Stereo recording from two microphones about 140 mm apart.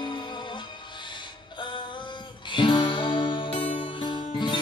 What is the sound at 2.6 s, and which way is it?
Music, 35° left (ahead or behind).